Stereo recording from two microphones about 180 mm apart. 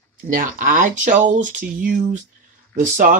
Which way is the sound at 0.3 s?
45° right (ahead or behind).